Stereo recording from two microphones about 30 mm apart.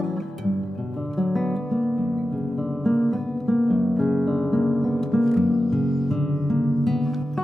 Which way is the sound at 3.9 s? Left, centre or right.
Centre.